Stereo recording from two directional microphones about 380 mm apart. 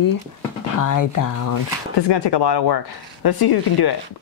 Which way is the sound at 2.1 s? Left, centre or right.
Left.